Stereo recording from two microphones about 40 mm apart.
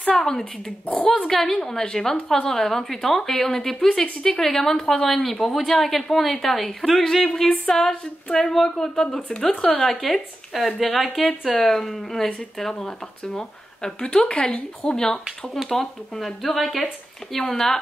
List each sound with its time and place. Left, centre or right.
0.0 s a woman's voice: centre
7.9 s a woman's voice: left
8.4 s a woman's voice: centre
15.7 s a woman's voice: centre